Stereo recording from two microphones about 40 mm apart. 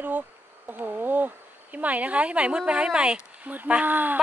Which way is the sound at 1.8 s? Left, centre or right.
Right.